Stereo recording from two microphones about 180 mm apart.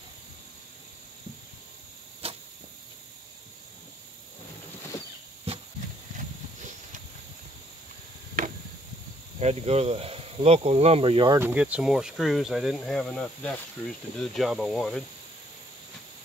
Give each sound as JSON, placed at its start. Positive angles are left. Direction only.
{"t": 2.2, "sound": "arrow", "side_deg": -35}
{"t": 9.4, "sound": "speech", "side_deg": -35}
{"t": 11.3, "sound": "speech", "side_deg": -10}